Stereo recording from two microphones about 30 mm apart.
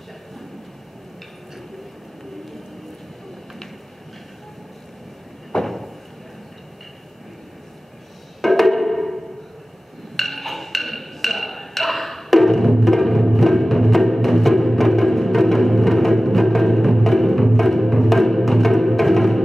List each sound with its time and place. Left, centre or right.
5.5 s a sound: left
8.4 s music: centre
10.1 s wood block: centre
12.3 s music: centre